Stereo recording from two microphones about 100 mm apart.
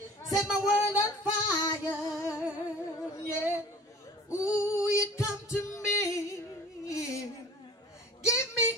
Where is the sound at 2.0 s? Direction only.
30° left (ahead or behind).